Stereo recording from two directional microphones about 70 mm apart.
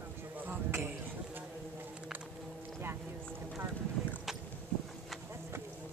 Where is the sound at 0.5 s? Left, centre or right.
Right.